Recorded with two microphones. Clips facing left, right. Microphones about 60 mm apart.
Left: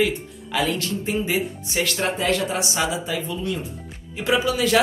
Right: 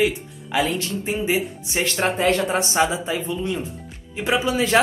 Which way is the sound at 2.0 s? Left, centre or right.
Right.